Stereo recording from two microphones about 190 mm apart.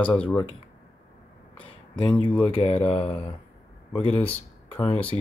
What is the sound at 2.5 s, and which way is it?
Speech, 30° left (ahead or behind).